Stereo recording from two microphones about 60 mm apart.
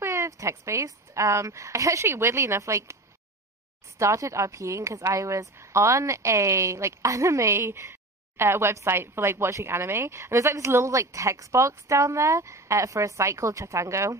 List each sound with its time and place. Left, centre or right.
0.0 s a woman's voice: right
4.0 s a woman's voice: right